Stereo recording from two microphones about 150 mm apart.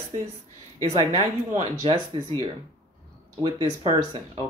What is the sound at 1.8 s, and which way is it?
Speech, 35° right (ahead or behind).